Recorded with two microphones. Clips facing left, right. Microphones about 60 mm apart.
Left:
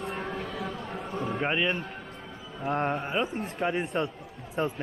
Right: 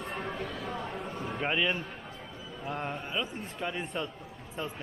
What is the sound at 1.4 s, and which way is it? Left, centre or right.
Speech, centre.